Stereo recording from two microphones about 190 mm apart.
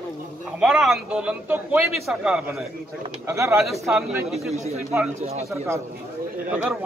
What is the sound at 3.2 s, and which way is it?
Speech, 15° right (ahead or behind).